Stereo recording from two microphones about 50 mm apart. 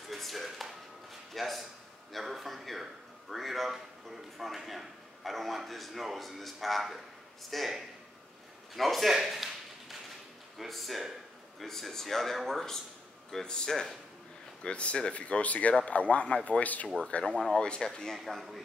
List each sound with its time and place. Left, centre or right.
0.1 s tap: centre
1.3 s a man's voice: centre
14.6 s speech: left
17.6 s speech: centre
18.2 s a man's voice: centre